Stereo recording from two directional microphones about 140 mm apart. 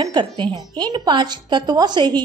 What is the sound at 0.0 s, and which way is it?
A woman's voice, 30° right (ahead or behind).